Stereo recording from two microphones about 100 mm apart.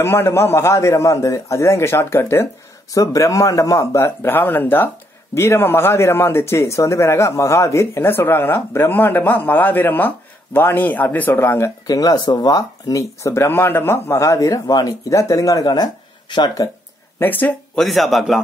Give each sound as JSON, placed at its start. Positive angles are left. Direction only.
{"t": 0.0, "sound": "speech", "side_deg": 25}
{"t": 2.9, "sound": "speech", "side_deg": 35}
{"t": 11.9, "sound": "speech", "side_deg": 40}
{"t": 17.2, "sound": "speech", "side_deg": 20}
{"t": 17.7, "sound": "a man's voice", "side_deg": 0}